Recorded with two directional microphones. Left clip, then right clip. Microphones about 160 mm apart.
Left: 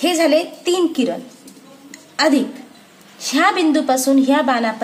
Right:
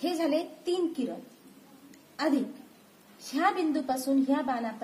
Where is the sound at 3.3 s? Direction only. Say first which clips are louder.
Left 12 dB; 35° left (ahead or behind).